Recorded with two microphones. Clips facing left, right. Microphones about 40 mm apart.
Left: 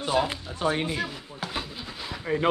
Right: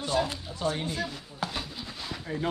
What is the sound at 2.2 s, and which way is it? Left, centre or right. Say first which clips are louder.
Speech: left 7 dB; left.